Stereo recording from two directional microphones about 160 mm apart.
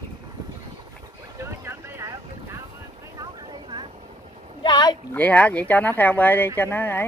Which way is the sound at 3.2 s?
30° right (ahead or behind).